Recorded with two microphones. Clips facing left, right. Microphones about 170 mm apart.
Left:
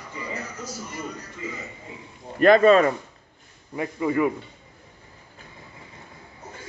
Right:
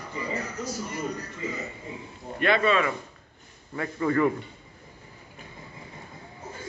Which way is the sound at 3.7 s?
15° left (ahead or behind).